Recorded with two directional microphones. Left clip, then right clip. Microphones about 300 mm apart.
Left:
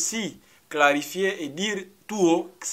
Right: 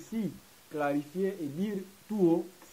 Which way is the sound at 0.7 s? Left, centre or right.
Centre.